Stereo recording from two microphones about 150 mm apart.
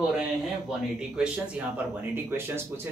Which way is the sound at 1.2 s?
10° right (ahead or behind).